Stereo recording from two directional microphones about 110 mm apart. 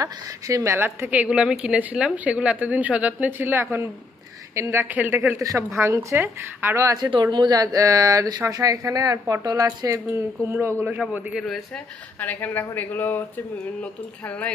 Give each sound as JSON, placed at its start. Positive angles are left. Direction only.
{"t": 0.0, "sound": "speech", "side_deg": -30}
{"t": 0.7, "sound": "a woman's voice", "side_deg": -20}
{"t": 5.4, "sound": "speech", "side_deg": -30}
{"t": 7.1, "sound": "a woman's voice", "side_deg": -45}
{"t": 11.3, "sound": "speech", "side_deg": 0}
{"t": 12.2, "sound": "speech", "side_deg": 15}